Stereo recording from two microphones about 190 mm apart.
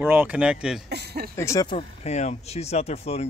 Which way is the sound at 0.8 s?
60° right (ahead or behind).